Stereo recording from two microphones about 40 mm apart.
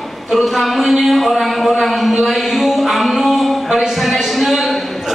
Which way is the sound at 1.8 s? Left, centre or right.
Centre.